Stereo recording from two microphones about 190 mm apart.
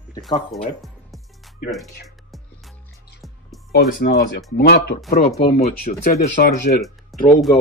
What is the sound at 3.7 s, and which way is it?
Speech, 60° left (ahead or behind).